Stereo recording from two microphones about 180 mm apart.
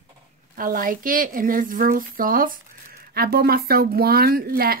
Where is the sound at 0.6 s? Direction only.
50° right (ahead or behind).